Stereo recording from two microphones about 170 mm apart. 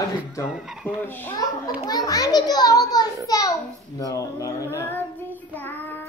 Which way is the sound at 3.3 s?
20° left (ahead or behind).